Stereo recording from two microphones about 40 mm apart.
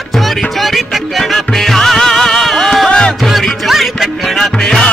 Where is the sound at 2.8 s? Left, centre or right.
Left.